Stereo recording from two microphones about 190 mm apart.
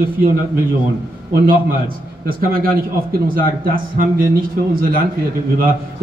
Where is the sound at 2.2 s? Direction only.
50° right (ahead or behind).